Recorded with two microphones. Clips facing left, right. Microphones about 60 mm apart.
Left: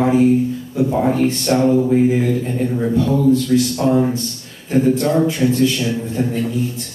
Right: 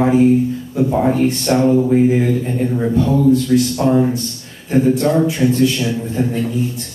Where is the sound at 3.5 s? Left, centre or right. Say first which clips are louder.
Right 1 dB; right.